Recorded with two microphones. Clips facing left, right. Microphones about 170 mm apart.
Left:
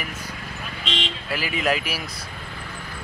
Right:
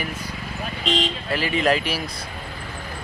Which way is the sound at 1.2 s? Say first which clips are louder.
Right 2 dB; 5° left (ahead or behind).